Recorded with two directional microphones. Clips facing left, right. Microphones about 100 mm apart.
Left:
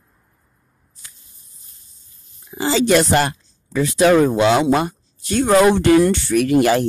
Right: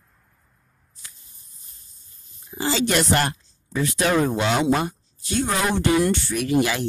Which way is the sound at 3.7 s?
90° left.